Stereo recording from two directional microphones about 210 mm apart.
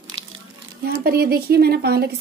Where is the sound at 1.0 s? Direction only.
45° right (ahead or behind).